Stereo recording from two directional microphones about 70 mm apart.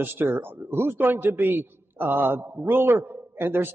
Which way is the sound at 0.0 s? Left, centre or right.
Right.